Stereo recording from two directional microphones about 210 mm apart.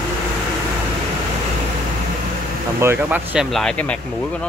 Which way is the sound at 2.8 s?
10° right (ahead or behind).